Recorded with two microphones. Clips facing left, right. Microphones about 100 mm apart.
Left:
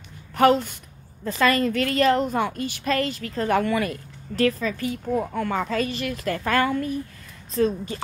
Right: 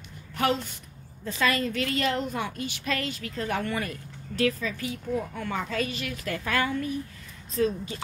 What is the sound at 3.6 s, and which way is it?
Speech, 90° left.